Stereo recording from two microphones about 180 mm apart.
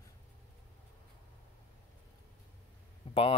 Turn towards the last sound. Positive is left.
turn(degrees=30)  # may be behind; listen again after turning